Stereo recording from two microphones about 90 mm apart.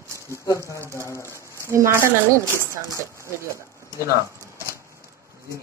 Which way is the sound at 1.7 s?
30° right (ahead or behind).